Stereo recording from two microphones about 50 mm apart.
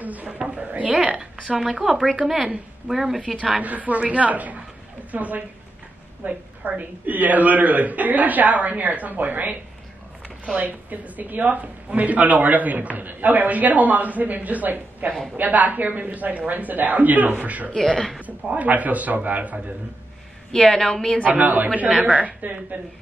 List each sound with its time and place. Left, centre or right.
0.0 s speech: right
0.6 s a sound: right
0.9 s a woman's voice: centre
1.6 s a woman's voice: centre
3.6 s speech: right
17.7 s a woman's voice: centre
18.2 s speech: right
20.5 s a woman's voice: centre
21.2 s speech: right